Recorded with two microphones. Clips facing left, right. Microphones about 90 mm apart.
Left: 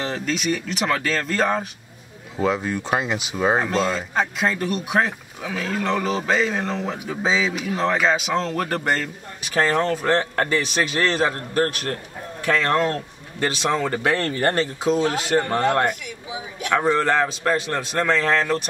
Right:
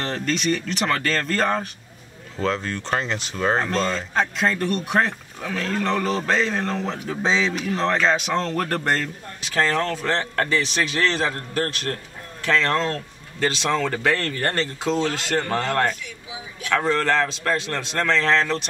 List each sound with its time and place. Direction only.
0.0 s speech: 5° left (ahead or behind)